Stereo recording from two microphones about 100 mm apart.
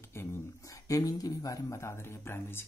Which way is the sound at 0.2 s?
25° left (ahead or behind).